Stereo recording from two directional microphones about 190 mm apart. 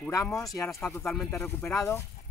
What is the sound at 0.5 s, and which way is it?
Speech, 15° left (ahead or behind).